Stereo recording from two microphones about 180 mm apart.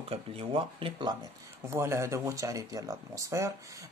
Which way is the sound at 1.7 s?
15° right (ahead or behind).